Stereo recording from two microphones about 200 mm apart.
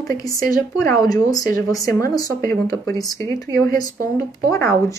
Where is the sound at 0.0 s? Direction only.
15° left (ahead or behind).